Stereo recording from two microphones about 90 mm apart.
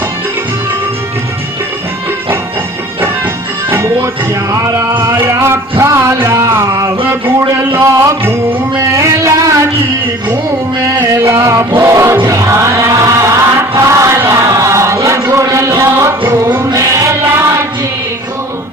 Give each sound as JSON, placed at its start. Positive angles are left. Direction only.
{"t": 3.7, "sound": "music", "side_deg": -35}
{"t": 5.2, "sound": "a sound", "side_deg": -30}
{"t": 7.2, "sound": "music", "side_deg": -30}
{"t": 11.2, "sound": "music", "side_deg": -35}
{"t": 12.3, "sound": "chant", "side_deg": -35}
{"t": 16.7, "sound": "music", "side_deg": -35}